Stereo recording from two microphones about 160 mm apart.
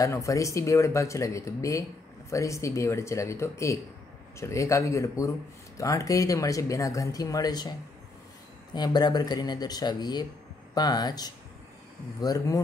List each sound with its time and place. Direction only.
0.0 s speech: 20° left (ahead or behind)
8.7 s speech: 25° left (ahead or behind)